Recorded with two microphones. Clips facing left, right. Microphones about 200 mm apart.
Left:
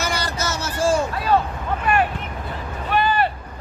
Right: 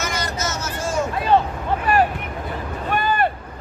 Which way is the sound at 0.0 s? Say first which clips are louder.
Left 1 dB; 30° left (ahead or behind).